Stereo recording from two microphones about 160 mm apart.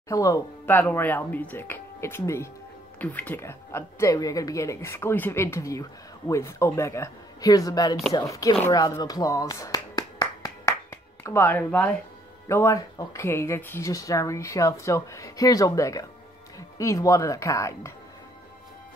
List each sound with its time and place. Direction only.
0.1 s speech: 20° left (ahead or behind)
8.6 s a sound: 20° left (ahead or behind)
12.4 s speech: 15° left (ahead or behind)